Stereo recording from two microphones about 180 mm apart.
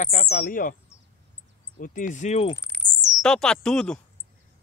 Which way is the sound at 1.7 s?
50° left (ahead or behind).